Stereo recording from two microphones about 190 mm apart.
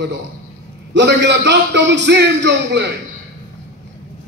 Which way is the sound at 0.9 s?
65° right (ahead or behind).